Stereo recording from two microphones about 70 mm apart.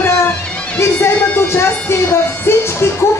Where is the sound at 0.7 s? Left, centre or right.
Left.